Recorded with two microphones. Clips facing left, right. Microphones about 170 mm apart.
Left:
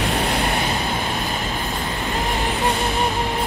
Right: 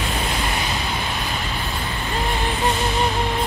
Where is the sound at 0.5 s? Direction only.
40° left (ahead or behind).